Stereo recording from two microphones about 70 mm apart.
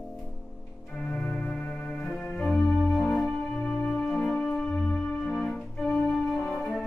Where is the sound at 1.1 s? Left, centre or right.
Centre.